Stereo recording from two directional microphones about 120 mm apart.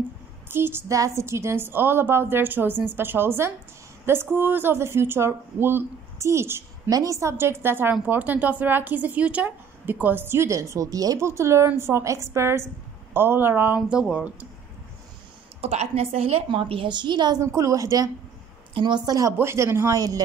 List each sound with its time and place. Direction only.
0.5 s speech: 20° right (ahead or behind)
13.7 s speech: 5° right (ahead or behind)
15.6 s a woman's voice: 60° right (ahead or behind); by 17.4 s 40° right (ahead or behind)
17.4 s speech: 25° right (ahead or behind)